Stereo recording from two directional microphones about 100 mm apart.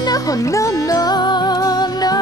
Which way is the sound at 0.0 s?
40° left (ahead or behind).